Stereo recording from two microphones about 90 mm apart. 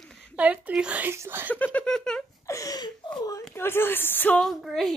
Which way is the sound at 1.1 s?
25° right (ahead or behind).